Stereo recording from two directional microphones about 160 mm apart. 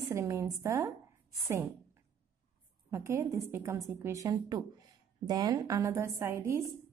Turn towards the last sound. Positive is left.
turn(degrees=-15)  # may be behind; listen again after turning